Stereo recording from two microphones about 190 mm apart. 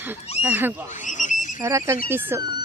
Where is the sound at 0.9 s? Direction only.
40° left (ahead or behind).